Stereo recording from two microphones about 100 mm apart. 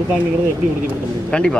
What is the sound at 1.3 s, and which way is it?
Speech, 10° left (ahead or behind).